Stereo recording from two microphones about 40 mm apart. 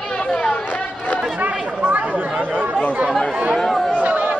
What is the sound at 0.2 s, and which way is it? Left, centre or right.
Chatter, left.